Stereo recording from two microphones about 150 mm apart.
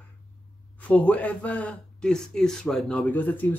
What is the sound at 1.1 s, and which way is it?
A man's voice, 10° left (ahead or behind).